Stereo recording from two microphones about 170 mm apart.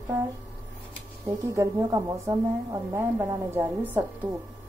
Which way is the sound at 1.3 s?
20° right (ahead or behind).